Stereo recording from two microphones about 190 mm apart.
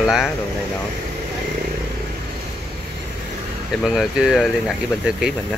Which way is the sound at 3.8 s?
Centre (ahead or behind).